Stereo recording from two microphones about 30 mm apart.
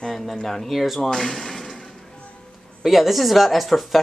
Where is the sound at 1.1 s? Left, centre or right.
Centre.